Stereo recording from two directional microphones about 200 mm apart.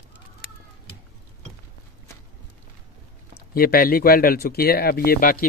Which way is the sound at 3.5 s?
50° left (ahead or behind).